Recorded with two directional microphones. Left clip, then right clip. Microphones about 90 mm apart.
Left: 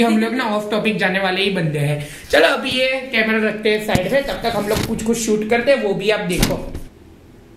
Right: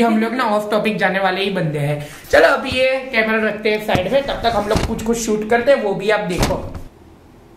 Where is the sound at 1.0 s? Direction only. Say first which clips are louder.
Right 1 dB; centre (ahead or behind).